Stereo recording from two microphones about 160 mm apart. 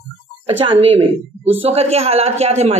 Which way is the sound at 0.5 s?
35° right (ahead or behind).